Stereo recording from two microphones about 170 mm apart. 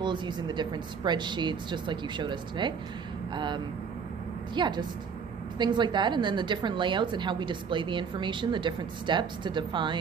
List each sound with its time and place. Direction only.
0.0 s a woman's voice: 25° right (ahead or behind)